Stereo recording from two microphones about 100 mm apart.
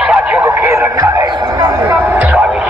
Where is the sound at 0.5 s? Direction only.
30° right (ahead or behind).